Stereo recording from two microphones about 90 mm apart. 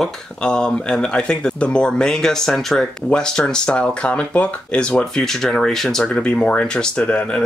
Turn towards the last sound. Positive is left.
turn(degrees=10)  # may be behind; listen again after turning